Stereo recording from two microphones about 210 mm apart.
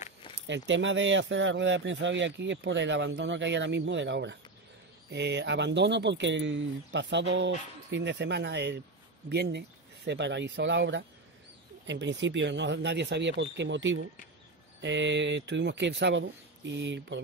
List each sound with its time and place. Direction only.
0.5 s speech: 60° right (ahead or behind)